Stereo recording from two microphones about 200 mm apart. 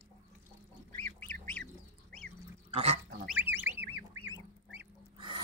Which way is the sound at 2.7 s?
30° right (ahead or behind).